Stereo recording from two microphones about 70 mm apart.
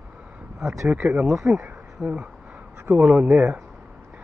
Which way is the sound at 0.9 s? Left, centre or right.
Centre.